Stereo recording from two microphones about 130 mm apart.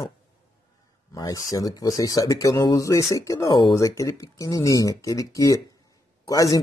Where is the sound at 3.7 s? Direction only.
25° left (ahead or behind).